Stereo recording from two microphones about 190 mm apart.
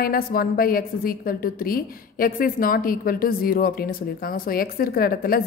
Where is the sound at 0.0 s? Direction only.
50° left (ahead or behind).